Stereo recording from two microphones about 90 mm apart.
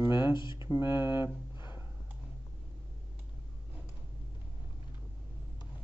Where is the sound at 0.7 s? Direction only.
30° right (ahead or behind).